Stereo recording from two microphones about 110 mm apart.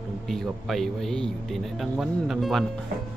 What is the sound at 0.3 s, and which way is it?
Speech, 5° left (ahead or behind).